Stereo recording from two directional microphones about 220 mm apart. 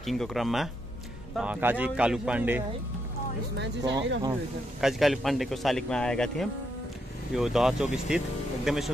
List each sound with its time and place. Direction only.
0.0 s a man's voice: centre (ahead or behind)
3.5 s speech: 50° right (ahead or behind)
4.7 s a man's voice: centre (ahead or behind)